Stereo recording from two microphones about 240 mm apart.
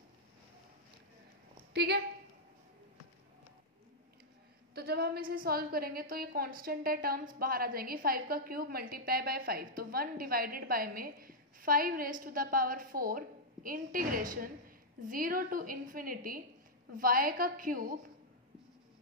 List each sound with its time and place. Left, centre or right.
1.7 s a woman's voice: right
4.7 s a woman's voice: right